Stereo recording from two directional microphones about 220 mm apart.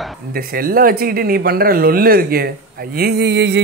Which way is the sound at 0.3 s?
45° right (ahead or behind).